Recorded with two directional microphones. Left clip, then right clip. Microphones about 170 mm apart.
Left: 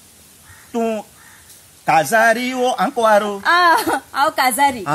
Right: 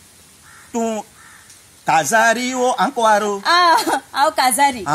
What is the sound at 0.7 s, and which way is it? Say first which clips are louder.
Speech: left 1 dB; 40° left (ahead or behind).